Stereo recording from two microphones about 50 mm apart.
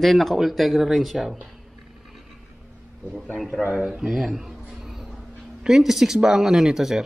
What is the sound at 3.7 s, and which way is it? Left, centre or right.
Speech, centre.